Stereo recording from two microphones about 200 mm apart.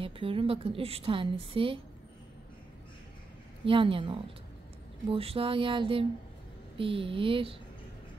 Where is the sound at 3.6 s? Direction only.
25° right (ahead or behind).